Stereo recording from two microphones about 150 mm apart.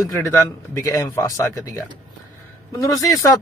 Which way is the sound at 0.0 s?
20° left (ahead or behind).